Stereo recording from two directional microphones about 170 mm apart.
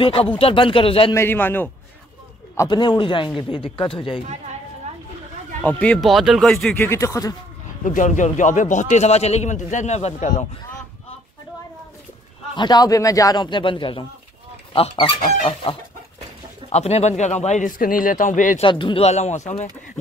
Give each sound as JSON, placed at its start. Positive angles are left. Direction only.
{"t": 0.0, "sound": "speech", "side_deg": 35}
{"t": 1.1, "sound": "a man's voice", "side_deg": 15}
{"t": 5.6, "sound": "speech", "side_deg": 10}
{"t": 7.8, "sound": "a man's voice", "side_deg": 45}
{"t": 12.5, "sound": "a man's voice", "side_deg": 25}
{"t": 16.7, "sound": "a man's voice", "side_deg": 40}
{"t": 18.6, "sound": "speech", "side_deg": 30}